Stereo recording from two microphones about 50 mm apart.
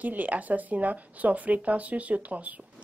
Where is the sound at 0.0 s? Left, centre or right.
Right.